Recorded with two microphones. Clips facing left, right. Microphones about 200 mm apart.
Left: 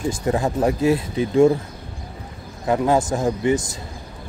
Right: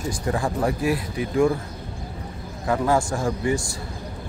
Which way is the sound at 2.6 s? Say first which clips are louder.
Left 3 dB; 20° left (ahead or behind).